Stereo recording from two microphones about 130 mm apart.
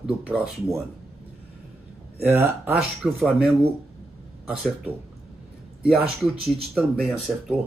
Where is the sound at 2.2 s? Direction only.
15° right (ahead or behind).